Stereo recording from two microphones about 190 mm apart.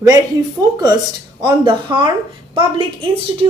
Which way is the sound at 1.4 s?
25° right (ahead or behind).